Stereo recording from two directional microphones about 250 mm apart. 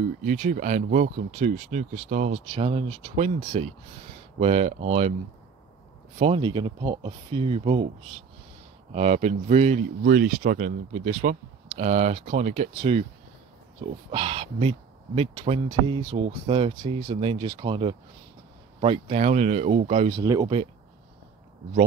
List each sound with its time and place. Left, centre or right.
0.0 s speech: right
6.1 s speech: right
8.9 s speech: right
14.1 s speech: right
20.2 s speech: centre